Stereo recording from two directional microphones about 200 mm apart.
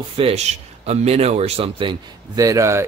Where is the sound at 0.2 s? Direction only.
30° right (ahead or behind).